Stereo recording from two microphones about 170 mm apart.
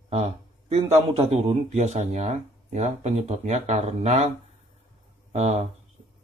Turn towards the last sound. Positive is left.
turn(degrees=-40)  # may be behind; listen again after turning